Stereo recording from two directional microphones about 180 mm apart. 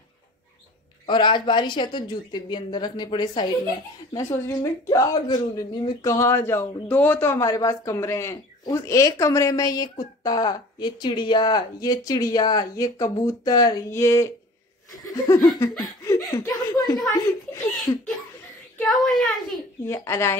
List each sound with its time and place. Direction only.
1.0 s speech: 25° left (ahead or behind)
14.9 s laughter: 15° left (ahead or behind)
16.3 s a woman's voice: 20° left (ahead or behind)
18.9 s a woman's voice: centre (ahead or behind)
19.8 s a woman's voice: 15° left (ahead or behind)